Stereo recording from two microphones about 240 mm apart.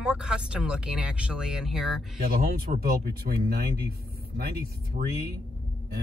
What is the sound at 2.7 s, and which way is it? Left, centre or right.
Speech, right.